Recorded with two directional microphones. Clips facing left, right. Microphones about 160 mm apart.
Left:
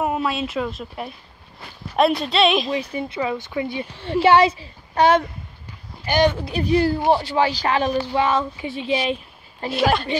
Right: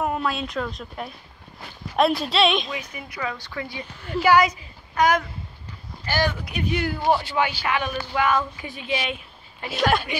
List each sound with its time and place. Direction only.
0.0 s speech: 5° left (ahead or behind)
2.7 s speech: 30° left (ahead or behind)
9.7 s speech: centre (ahead or behind)